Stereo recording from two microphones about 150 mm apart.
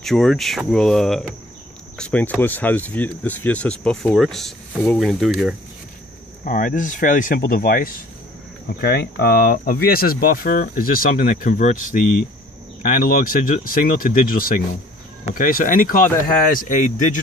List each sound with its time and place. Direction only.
0.0 s speech: 5° left (ahead or behind)
6.4 s speech: 65° left (ahead or behind)
8.8 s speech: 90° left; by 17.2 s 60° left (ahead or behind)